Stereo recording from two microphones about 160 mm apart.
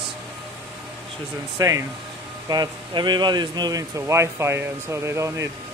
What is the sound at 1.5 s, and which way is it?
Speech, 20° right (ahead or behind).